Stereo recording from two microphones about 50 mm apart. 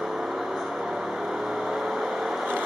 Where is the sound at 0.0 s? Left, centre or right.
Centre.